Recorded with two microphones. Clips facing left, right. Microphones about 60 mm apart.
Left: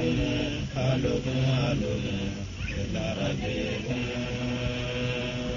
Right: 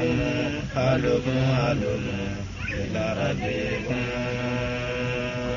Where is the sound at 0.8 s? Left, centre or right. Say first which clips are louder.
Right 5 dB; right.